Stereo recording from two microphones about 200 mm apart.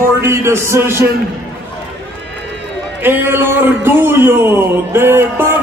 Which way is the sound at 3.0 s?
10° right (ahead or behind).